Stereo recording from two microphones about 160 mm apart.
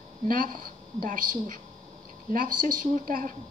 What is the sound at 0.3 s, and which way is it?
A woman's voice, 60° right (ahead or behind).